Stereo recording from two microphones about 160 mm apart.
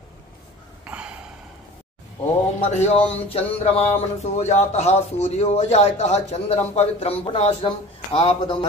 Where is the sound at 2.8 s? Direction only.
40° left (ahead or behind).